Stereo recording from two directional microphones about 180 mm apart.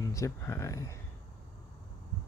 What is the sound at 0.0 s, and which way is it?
Speech, 15° left (ahead or behind).